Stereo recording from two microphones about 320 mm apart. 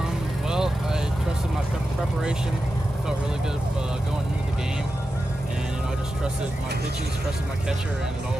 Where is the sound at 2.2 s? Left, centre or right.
Centre.